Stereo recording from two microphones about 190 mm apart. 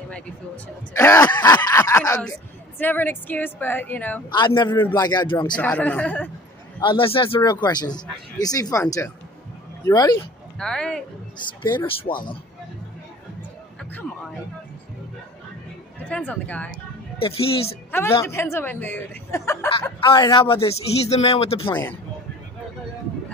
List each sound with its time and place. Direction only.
0.9 s a woman's voice: 15° left (ahead or behind)
4.3 s speech: 25° left (ahead or behind)
5.6 s a woman's voice: 10° left (ahead or behind)
6.8 s speech: 25° left (ahead or behind)
9.8 s a woman's voice: 15° left (ahead or behind)
10.6 s speech: 5° left (ahead or behind)
11.6 s speech: 25° left (ahead or behind)
16.0 s a woman's voice: 10° left (ahead or behind)
17.2 s speech: 30° left (ahead or behind)
18.2 s a woman's voice: 15° left (ahead or behind); by 21.6 s 30° left (ahead or behind)
21.6 s a woman's voice: 10° left (ahead or behind)